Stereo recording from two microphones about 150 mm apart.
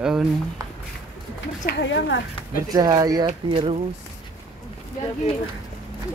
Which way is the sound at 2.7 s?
25° right (ahead or behind).